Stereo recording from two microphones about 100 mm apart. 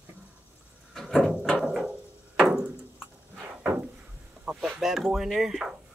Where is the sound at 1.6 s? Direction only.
10° right (ahead or behind).